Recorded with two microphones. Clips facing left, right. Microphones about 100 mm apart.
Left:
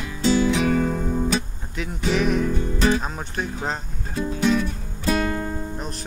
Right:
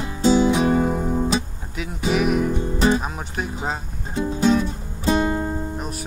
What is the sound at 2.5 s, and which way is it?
Music, 20° right (ahead or behind).